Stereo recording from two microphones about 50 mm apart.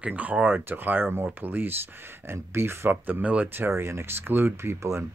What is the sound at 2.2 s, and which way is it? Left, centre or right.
Speech, right.